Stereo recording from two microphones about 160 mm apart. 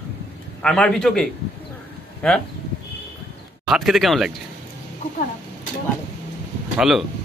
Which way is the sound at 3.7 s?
Centre (ahead or behind).